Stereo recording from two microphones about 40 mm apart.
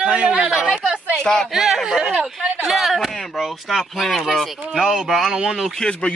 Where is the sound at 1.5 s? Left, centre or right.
Centre.